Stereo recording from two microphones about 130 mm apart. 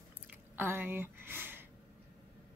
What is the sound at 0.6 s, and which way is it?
A woman's voice, 15° right (ahead or behind).